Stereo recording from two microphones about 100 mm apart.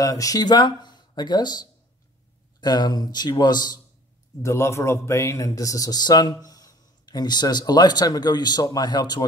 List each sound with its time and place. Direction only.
0.0 s speech: 35° left (ahead or behind)
4.4 s speech: 30° left (ahead or behind); by 9.2 s 45° left (ahead or behind)